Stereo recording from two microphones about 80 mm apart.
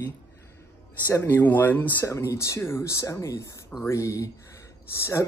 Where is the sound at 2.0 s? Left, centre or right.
Left.